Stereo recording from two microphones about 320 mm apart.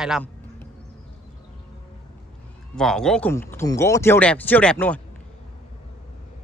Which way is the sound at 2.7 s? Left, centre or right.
Centre.